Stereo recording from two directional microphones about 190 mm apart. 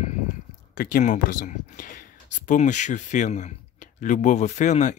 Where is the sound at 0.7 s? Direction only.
45° left (ahead or behind).